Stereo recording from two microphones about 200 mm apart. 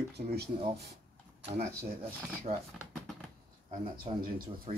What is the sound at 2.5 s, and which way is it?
Speech, 30° right (ahead or behind).